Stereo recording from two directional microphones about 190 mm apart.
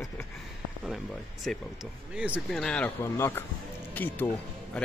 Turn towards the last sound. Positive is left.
turn(degrees=5)  # may be behind; listen again after turning